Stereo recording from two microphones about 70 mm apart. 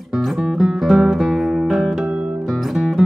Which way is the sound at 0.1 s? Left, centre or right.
Centre.